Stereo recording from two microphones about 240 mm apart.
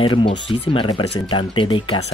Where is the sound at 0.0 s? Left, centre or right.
Left.